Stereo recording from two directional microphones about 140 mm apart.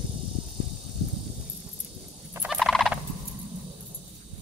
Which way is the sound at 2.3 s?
10° right (ahead or behind).